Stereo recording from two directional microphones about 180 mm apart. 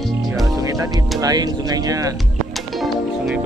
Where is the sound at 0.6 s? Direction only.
20° right (ahead or behind).